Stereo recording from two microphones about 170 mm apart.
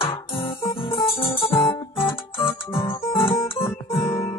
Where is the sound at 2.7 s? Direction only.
30° left (ahead or behind).